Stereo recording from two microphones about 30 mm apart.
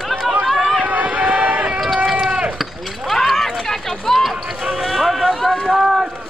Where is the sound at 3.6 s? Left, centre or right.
Centre.